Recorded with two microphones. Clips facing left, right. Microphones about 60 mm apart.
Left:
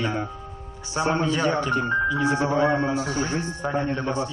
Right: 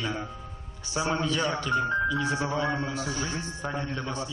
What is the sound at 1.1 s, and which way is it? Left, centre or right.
Speech, left.